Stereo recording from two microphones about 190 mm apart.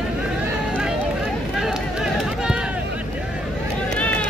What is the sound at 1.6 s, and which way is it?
Run, 5° right (ahead or behind).